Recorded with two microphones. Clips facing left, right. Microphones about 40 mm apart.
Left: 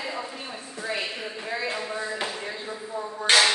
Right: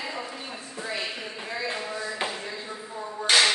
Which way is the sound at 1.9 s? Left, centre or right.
Left.